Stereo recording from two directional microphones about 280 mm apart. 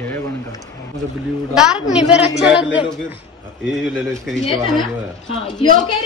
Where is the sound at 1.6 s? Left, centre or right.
Centre.